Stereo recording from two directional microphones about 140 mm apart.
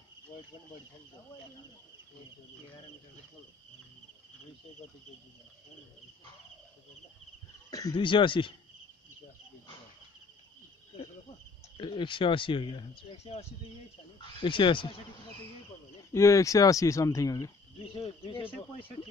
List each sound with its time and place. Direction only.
7.7 s speech: 30° left (ahead or behind)
11.7 s speech: 35° left (ahead or behind)
14.4 s speech: 35° left (ahead or behind)
16.1 s speech: 20° left (ahead or behind)
17.8 s speech: 40° left (ahead or behind)